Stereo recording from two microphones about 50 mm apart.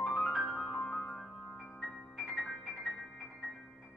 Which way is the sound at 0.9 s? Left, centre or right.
Centre.